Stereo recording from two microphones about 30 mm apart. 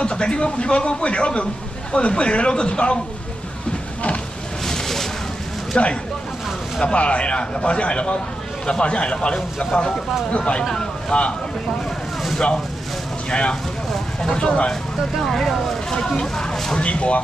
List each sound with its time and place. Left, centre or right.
0.0 s a man's voice: left
4.6 s a sound: centre
5.7 s a man's voice: left
10.7 s speech: left
13.3 s a man's voice: left
15.3 s speech: centre
15.9 s speech: left
16.7 s a man's voice: left